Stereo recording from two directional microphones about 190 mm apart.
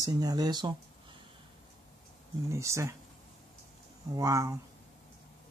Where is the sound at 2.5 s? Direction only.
15° right (ahead or behind).